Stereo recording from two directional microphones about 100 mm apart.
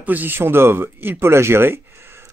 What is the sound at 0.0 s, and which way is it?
Speech, 15° right (ahead or behind).